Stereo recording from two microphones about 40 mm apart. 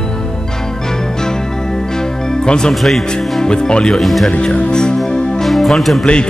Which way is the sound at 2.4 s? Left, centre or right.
Centre.